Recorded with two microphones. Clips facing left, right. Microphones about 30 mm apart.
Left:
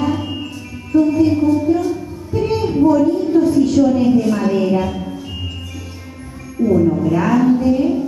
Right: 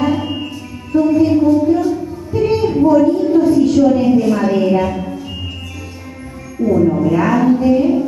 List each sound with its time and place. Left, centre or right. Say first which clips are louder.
0.0 s music: right 3 dB; centre
0.9 s a sound: right 1 dB; centre
6.8 s a woman's voice: right 2 dB; centre
7.1 s music: right 1 dB; centre